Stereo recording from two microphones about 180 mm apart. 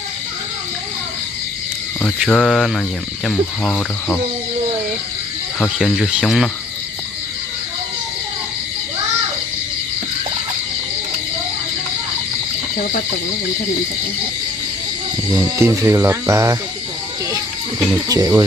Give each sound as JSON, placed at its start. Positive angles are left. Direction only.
{"t": 2.1, "sound": "speech", "side_deg": 0}
{"t": 5.6, "sound": "speech", "side_deg": 0}
{"t": 15.3, "sound": "speech", "side_deg": -15}
{"t": 18.0, "sound": "speech", "side_deg": -20}